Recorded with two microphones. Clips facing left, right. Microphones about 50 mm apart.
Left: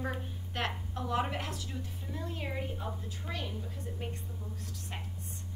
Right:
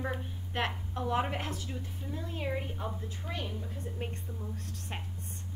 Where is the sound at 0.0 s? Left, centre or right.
Centre.